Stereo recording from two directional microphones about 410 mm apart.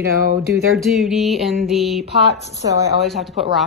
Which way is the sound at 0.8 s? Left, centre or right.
Centre.